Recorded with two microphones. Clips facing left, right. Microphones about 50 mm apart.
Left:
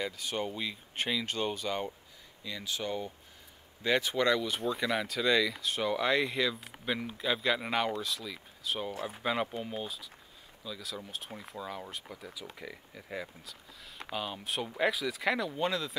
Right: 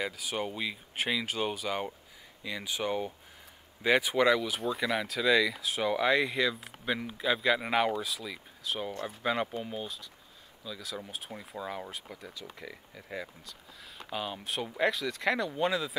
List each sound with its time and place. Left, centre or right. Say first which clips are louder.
0.0 s speech: right 1 dB; centre